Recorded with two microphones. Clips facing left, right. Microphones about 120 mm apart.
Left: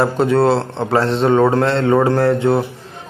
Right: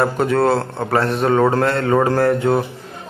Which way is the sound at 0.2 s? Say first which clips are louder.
Left 4 dB; 25° left (ahead or behind).